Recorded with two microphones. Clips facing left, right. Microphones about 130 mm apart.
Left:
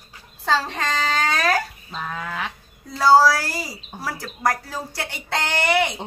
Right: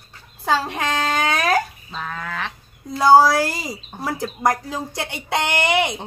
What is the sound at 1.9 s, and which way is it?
Speech, 10° left (ahead or behind).